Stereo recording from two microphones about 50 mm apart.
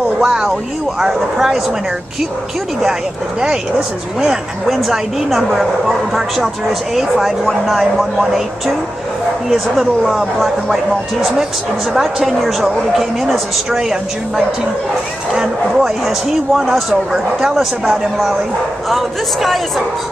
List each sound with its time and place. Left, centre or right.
0.2 s speech: centre
2.8 s a woman's voice: centre
18.9 s a woman's voice: centre